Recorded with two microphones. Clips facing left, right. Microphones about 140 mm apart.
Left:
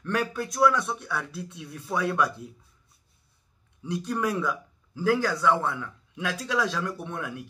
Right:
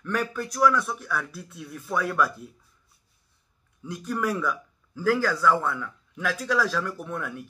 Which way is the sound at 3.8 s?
25° left (ahead or behind).